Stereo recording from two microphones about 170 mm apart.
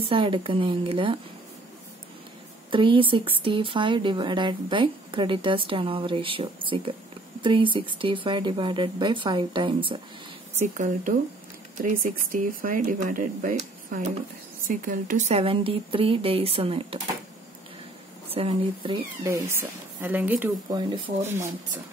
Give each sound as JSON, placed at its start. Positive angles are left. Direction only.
{"t": 0.0, "sound": "speech", "side_deg": -30}
{"t": 2.7, "sound": "a woman's voice", "side_deg": -30}
{"t": 10.6, "sound": "speech", "side_deg": -45}
{"t": 18.3, "sound": "speech", "side_deg": -35}
{"t": 19.2, "sound": "speech", "side_deg": -15}